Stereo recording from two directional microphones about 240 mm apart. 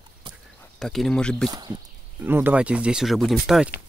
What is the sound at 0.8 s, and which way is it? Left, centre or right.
Speech, centre.